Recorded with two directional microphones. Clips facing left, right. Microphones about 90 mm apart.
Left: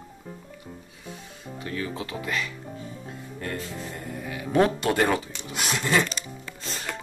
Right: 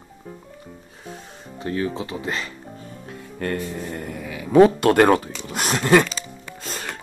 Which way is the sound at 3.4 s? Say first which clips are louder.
Right 7 dB; 65° right (ahead or behind).